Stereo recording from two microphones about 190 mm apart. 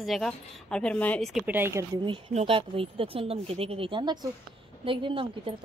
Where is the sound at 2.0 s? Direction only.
25° right (ahead or behind).